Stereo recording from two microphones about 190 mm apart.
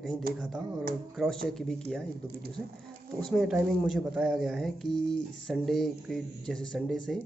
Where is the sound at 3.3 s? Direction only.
Centre (ahead or behind).